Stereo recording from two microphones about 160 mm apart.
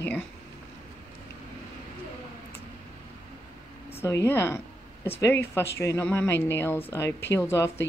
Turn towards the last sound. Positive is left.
turn(degrees=15)  # may be behind; listen again after turning